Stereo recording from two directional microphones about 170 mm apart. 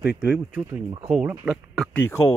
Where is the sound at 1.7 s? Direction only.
10° left (ahead or behind).